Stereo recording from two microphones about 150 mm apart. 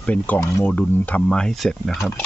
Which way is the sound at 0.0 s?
10° left (ahead or behind).